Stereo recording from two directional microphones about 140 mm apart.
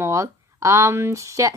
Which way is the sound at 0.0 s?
20° right (ahead or behind).